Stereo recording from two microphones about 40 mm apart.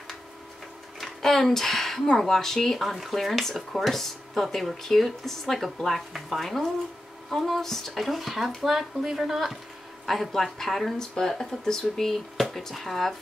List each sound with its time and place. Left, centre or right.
1.0 s speech: centre